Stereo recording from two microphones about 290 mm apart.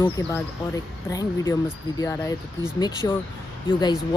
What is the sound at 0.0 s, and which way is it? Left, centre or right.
Speech, centre.